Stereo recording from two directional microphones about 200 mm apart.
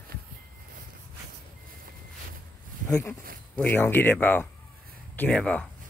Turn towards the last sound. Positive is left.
turn(degrees=5)  # may be behind; listen again after turning